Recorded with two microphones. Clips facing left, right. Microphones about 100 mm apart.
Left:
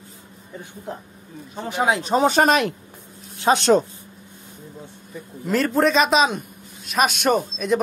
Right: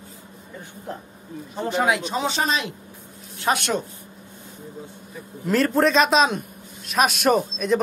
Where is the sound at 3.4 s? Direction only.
30° left (ahead or behind).